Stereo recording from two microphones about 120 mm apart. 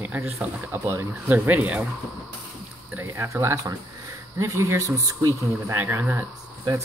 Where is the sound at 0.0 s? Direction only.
15° right (ahead or behind).